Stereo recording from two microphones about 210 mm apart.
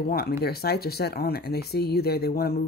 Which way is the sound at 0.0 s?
45° left (ahead or behind).